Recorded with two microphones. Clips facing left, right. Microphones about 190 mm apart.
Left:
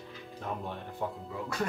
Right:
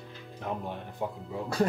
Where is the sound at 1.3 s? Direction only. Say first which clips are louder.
Right 9 dB; 30° right (ahead or behind).